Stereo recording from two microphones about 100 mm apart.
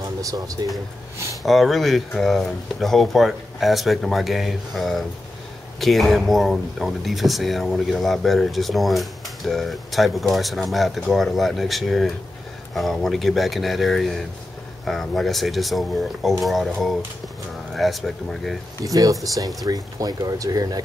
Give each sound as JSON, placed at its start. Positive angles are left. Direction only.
{"t": 0.0, "sound": "speech", "side_deg": -35}
{"t": 1.4, "sound": "speech", "side_deg": 0}
{"t": 17.7, "sound": "speech", "side_deg": 0}
{"t": 18.9, "sound": "speech", "side_deg": -35}